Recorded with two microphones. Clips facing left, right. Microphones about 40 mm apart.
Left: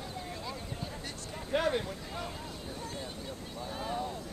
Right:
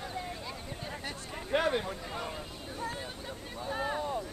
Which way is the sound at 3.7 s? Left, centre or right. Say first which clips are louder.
Right 4 dB; right.